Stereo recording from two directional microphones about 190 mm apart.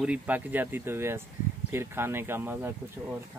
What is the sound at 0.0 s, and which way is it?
Speech, 5° right (ahead or behind).